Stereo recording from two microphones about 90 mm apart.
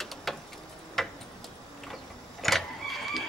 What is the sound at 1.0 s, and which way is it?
Tick-tock, centre (ahead or behind).